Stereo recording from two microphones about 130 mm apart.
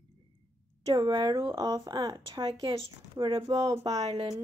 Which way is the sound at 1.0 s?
35° right (ahead or behind).